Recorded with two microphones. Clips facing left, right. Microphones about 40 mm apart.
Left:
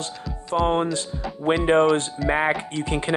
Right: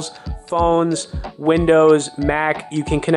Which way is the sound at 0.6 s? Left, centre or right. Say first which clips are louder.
Right 6 dB; centre.